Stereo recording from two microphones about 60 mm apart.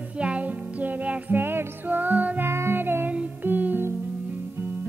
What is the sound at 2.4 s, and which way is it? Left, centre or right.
Music, right.